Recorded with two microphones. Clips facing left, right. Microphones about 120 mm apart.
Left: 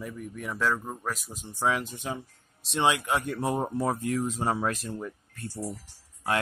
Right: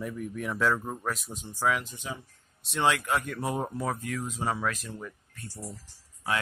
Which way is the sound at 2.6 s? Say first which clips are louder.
Left 1 dB; 25° left (ahead or behind).